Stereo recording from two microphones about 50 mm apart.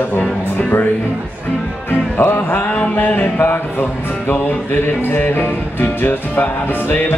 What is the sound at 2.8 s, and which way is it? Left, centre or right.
Music, left.